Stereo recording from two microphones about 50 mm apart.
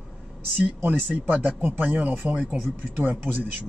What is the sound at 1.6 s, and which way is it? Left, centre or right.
Speech, right.